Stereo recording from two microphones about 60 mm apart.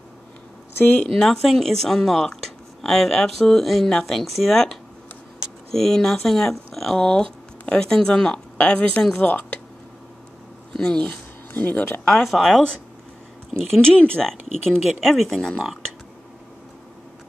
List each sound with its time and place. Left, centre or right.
0.7 s speech: left
1.0 s speech: centre; by 9.6 s left
10.8 s speech: centre
11.1 s speech: left
12.1 s speech: centre
13.6 s speech: centre
14.2 s speech: centre